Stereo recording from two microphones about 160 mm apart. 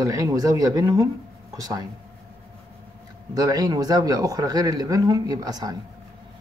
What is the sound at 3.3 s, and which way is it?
Speech, 20° right (ahead or behind).